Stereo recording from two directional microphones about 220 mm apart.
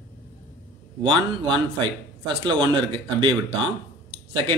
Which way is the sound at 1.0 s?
20° right (ahead or behind).